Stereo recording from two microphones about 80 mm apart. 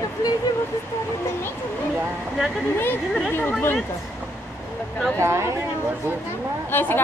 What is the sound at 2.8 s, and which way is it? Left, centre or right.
Speech, left.